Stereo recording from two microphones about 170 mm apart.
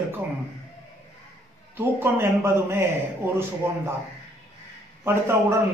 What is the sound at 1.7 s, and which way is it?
A man's voice, 15° right (ahead or behind).